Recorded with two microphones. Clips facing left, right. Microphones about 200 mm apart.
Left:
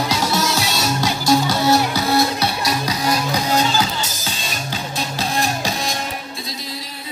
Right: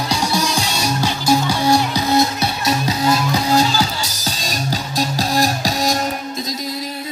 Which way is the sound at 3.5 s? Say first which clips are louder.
Right 2 dB; 35° right (ahead or behind).